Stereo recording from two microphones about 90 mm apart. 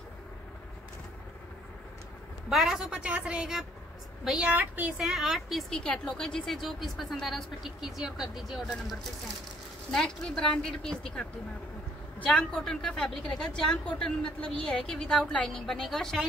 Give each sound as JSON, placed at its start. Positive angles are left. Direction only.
{"t": 2.5, "sound": "a woman's voice", "side_deg": -5}
{"t": 4.5, "sound": "a woman's voice", "side_deg": -20}
{"t": 4.9, "sound": "a woman's voice", "side_deg": -5}
{"t": 9.8, "sound": "a woman's voice", "side_deg": 5}
{"t": 12.3, "sound": "a woman's voice", "side_deg": 10}